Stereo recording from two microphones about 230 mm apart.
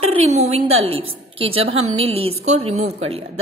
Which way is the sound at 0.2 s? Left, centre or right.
Right.